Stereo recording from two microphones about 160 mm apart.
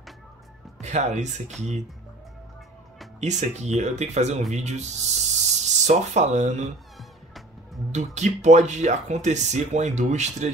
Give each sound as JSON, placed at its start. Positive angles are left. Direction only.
{"t": 0.7, "sound": "speech", "side_deg": -45}
{"t": 3.2, "sound": "speech", "side_deg": -45}
{"t": 7.9, "sound": "speech", "side_deg": -45}